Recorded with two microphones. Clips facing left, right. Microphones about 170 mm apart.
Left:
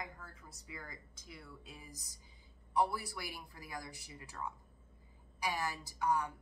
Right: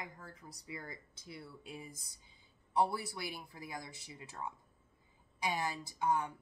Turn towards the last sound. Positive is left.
turn(degrees=-20)  # may be behind; listen again after turning